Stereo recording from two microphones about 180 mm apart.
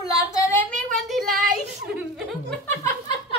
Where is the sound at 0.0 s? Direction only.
20° left (ahead or behind).